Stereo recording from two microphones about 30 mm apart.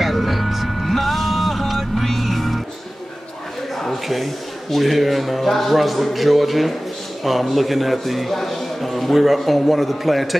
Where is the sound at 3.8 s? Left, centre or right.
Centre.